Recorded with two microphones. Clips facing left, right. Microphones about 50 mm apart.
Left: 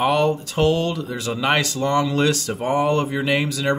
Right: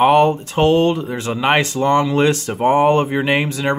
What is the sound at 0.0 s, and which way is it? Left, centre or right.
Speech, right.